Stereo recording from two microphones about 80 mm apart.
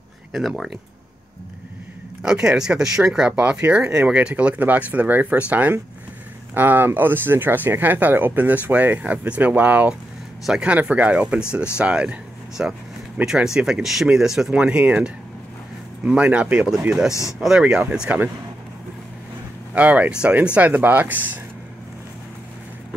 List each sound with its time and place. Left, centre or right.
0.3 s speech: centre
2.2 s speech: centre
17.1 s speech: left
17.4 s speech: centre
19.7 s speech: centre